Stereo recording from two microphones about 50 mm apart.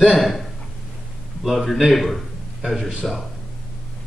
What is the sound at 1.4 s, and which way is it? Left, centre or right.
Speech, centre.